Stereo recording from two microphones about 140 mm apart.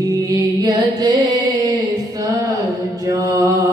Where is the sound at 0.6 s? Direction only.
25° right (ahead or behind).